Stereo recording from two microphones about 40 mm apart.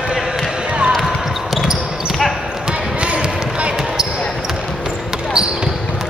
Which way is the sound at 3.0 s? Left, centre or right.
Right.